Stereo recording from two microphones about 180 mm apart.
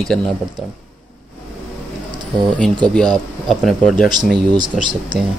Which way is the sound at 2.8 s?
Centre (ahead or behind).